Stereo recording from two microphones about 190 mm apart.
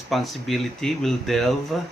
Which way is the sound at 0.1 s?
Centre (ahead or behind).